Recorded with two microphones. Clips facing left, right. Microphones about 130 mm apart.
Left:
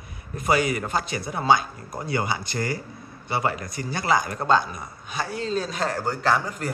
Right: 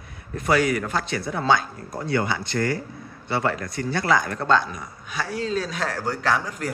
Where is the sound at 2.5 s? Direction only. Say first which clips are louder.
Right 4 dB; 55° right (ahead or behind).